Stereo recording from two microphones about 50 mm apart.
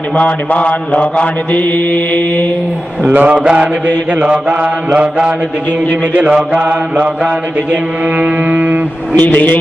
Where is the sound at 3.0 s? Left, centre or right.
Right.